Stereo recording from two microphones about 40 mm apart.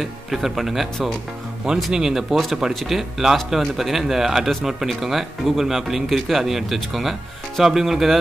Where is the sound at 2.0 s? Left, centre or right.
Centre.